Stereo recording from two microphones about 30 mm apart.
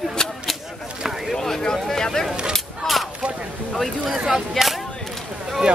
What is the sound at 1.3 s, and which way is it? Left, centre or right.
Speech, centre.